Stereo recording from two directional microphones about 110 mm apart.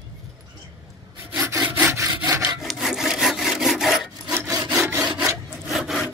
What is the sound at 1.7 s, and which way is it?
Wood, 20° right (ahead or behind).